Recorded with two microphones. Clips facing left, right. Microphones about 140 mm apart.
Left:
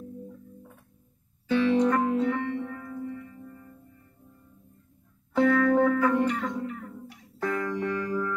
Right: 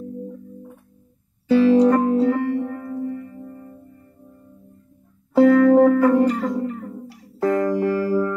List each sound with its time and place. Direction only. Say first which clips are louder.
1.5 s music: right 8 dB; 35° right (ahead or behind)
5.3 s music: right 9 dB; 30° right (ahead or behind)
6.0 s music: right 8 dB; 35° right (ahead or behind)